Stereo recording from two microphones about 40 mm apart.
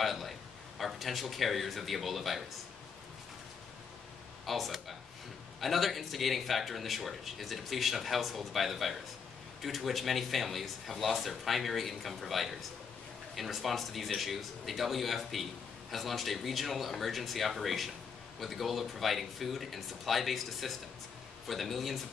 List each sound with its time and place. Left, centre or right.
0.0 s speech: centre
4.5 s speech: centre